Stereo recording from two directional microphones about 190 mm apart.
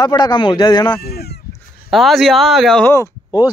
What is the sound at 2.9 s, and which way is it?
Speech, 20° left (ahead or behind).